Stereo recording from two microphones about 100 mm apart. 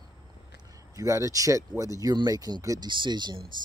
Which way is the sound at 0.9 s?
30° right (ahead or behind).